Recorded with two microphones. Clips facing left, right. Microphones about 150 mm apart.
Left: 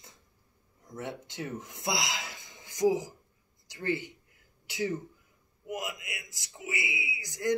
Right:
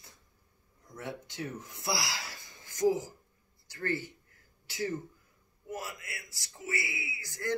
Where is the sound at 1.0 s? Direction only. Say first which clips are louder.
Left 1 dB; 20° left (ahead or behind).